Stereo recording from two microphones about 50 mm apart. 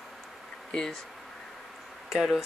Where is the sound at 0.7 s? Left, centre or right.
Centre.